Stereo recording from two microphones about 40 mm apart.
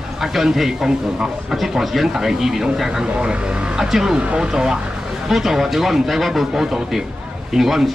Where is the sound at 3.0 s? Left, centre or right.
Right; by 7.9 s centre.